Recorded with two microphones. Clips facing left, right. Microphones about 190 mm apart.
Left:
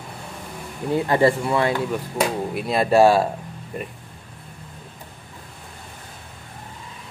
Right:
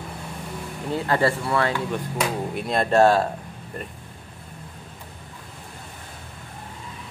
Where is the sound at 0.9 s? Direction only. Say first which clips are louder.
Left 4 dB; 15° left (ahead or behind).